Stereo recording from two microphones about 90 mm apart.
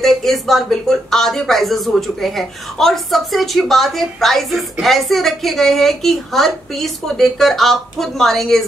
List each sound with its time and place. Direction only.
0.0 s speech: centre (ahead or behind)